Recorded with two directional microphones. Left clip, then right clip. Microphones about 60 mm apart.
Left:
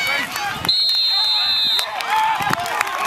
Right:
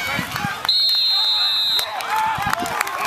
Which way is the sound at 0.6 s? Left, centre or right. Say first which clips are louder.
Even; left.